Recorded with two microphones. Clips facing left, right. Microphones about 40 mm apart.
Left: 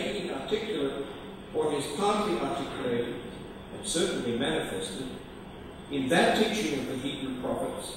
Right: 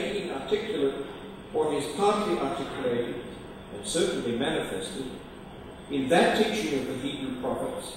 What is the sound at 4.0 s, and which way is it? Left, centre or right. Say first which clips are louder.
Speech: right 2 dB; centre.